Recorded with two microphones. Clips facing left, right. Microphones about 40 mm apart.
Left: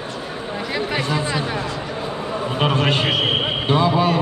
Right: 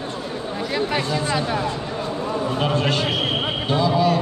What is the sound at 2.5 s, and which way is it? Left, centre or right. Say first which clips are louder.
A man's voice: left 4 dB; left.